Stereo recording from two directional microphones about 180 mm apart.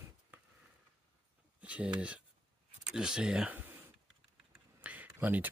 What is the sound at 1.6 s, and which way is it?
Speech, 5° right (ahead or behind).